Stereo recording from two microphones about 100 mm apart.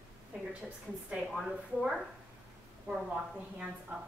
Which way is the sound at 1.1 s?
5° right (ahead or behind).